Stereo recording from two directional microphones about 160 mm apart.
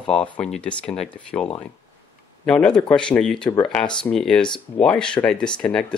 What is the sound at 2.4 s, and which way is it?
Speech, 5° left (ahead or behind).